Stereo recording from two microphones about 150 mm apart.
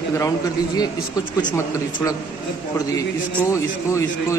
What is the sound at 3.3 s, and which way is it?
A man's voice, 20° left (ahead or behind).